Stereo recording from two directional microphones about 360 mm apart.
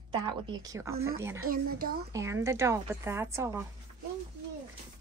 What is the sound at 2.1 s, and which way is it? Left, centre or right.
Speech, centre.